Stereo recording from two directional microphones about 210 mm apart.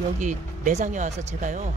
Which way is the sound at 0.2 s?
35° right (ahead or behind).